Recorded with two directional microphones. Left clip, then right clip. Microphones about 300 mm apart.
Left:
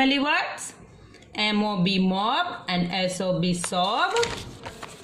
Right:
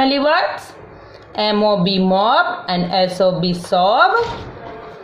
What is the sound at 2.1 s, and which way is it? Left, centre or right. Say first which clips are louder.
A woman's voice: right 14 dB; left.